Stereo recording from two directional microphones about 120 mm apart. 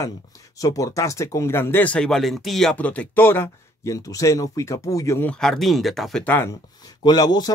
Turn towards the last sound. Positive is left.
turn(degrees=35)  # may be behind; listen again after turning